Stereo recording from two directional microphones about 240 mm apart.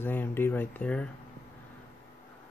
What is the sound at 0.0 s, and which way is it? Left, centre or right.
Speech, centre.